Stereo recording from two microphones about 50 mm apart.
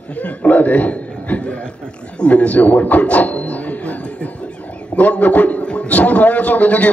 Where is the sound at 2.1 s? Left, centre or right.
Left.